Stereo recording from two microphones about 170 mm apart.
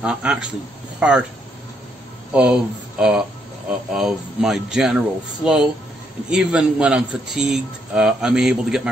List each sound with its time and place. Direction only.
0.0 s a man's voice: 5° right (ahead or behind)
2.3 s speech: 5° right (ahead or behind)